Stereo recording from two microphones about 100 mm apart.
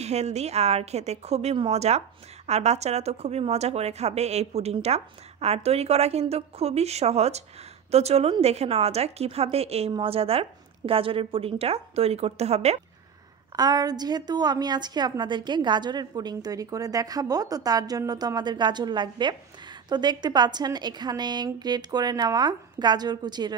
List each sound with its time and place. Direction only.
0.0 s a woman's voice: 90° right
10.0 s a woman's voice: 75° right (ahead or behind)
13.6 s a woman's voice: 40° right (ahead or behind)